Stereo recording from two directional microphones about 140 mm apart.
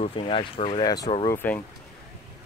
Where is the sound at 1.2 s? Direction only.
15° left (ahead or behind).